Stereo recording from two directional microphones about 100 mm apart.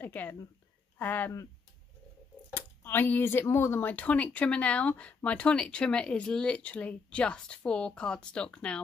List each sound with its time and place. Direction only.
0.0 s speech: 15° left (ahead or behind)
2.5 s speech: 20° left (ahead or behind)